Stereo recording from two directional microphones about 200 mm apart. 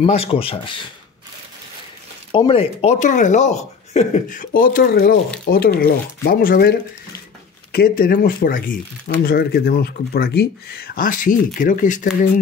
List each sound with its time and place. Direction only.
0.0 s speech: 30° left (ahead or behind)
2.3 s speech: 25° left (ahead or behind)